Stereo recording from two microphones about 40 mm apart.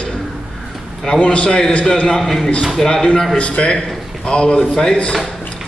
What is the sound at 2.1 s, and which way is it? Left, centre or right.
A man's voice, centre.